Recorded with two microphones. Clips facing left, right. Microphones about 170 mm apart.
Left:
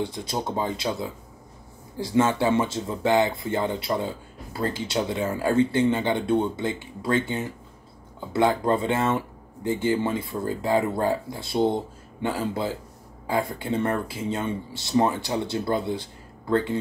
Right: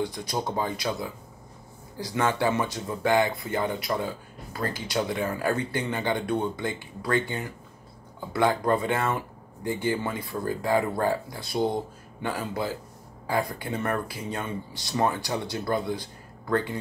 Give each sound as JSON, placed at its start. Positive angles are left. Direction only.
{"t": 0.0, "sound": "speech", "side_deg": 25}